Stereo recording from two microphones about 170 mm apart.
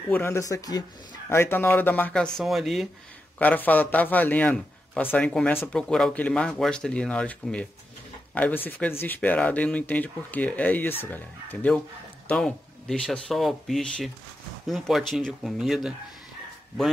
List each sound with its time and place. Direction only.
0.1 s a man's voice: 15° left (ahead or behind)
3.3 s a man's voice: 10° left (ahead or behind)